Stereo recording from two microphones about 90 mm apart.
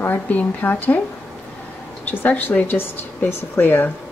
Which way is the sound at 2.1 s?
20° left (ahead or behind).